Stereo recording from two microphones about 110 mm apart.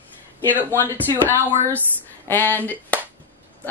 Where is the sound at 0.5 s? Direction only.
15° right (ahead or behind).